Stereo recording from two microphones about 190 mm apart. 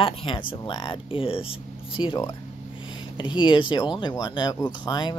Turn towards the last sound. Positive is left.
turn(degrees=25)  # may be behind; listen again after turning